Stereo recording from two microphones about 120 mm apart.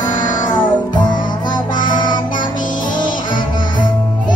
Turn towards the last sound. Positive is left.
turn(degrees=40)  # may be behind; listen again after turning